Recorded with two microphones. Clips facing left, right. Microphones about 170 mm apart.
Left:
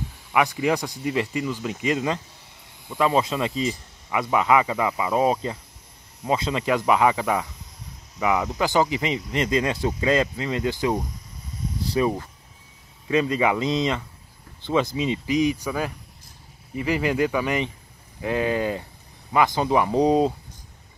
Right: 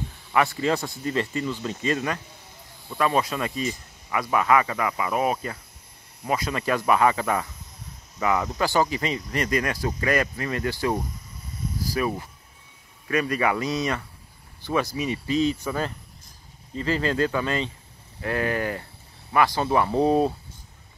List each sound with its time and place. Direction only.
0.3 s speech: 15° left (ahead or behind)